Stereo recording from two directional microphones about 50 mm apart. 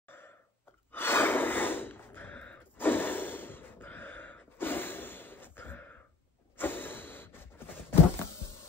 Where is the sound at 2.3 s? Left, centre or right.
Left.